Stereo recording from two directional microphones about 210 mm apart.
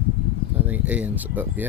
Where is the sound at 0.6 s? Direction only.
5° right (ahead or behind).